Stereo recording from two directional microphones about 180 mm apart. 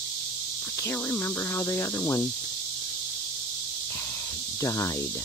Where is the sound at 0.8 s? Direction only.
15° left (ahead or behind).